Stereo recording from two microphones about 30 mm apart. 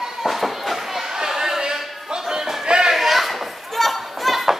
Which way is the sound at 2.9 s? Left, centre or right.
Centre.